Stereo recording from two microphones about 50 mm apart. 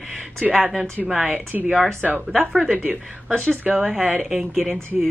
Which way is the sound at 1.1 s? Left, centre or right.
Right.